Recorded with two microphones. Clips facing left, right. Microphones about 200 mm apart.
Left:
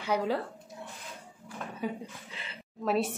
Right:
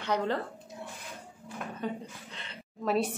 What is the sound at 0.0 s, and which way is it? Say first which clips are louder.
Speech: left 1 dB; 5° left (ahead or behind).